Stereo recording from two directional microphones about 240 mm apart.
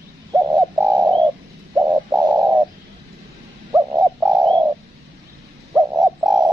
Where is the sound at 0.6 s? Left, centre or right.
Centre.